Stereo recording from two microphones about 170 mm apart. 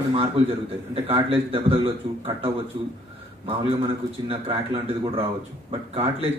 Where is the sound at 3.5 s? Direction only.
35° right (ahead or behind).